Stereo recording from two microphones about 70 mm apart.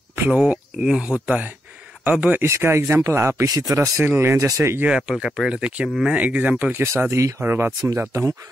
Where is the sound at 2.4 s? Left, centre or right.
Right.